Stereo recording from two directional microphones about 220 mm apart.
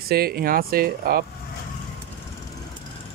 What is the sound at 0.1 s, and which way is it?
Speech, 45° right (ahead or behind).